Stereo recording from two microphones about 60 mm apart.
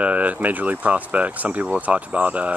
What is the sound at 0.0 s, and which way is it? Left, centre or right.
Speech, right.